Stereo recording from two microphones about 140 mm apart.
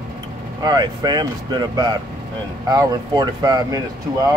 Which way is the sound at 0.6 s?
30° right (ahead or behind).